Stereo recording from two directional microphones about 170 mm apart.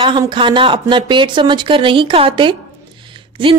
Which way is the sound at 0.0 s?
30° right (ahead or behind).